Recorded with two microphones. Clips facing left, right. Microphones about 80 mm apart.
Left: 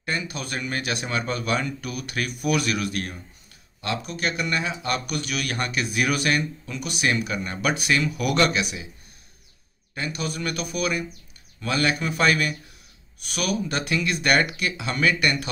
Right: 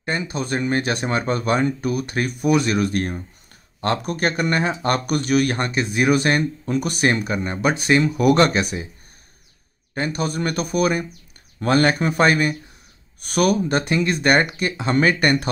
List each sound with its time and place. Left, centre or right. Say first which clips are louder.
0.0 s speech: right 5 dB; right
9.9 s speech: right 6 dB; right
13.2 s speech: right 8 dB; right